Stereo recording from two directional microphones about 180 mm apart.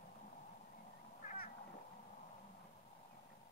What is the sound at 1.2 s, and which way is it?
Cat, 55° left (ahead or behind).